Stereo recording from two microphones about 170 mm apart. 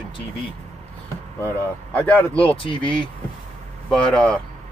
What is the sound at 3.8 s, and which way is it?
Speech, 5° left (ahead or behind).